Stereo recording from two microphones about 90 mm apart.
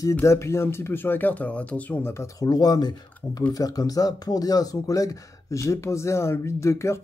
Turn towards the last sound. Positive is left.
turn(degrees=30)  # may be behind; listen again after turning